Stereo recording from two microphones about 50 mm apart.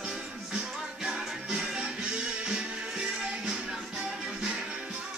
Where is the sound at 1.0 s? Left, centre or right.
Centre.